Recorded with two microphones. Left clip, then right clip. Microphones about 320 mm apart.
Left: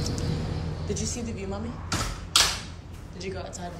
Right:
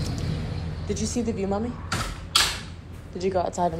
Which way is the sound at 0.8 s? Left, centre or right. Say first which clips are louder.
Right 6 dB; centre.